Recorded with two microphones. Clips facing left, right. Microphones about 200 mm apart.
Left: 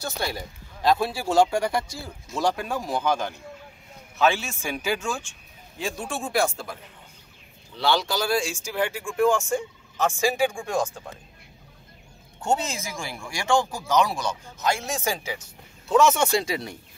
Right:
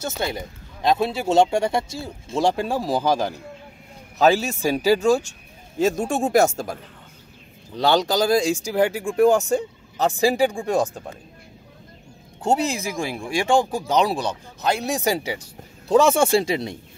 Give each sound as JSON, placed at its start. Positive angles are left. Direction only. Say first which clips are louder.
{"t": 0.2, "sound": "speech", "louder": "right 4 dB", "side_deg": -20}
{"t": 12.4, "sound": "speech", "louder": "right 4 dB", "side_deg": -35}
{"t": 12.9, "sound": "speech", "louder": "right 8 dB", "side_deg": -20}
{"t": 14.0, "sound": "speech", "louder": "right 5 dB", "side_deg": -35}